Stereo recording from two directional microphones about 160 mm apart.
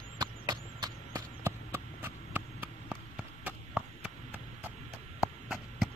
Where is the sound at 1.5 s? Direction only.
15° right (ahead or behind).